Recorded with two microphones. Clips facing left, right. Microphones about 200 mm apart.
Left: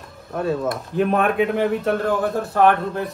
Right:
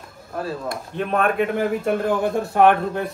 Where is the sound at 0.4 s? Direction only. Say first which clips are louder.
Left 5 dB; centre (ahead or behind).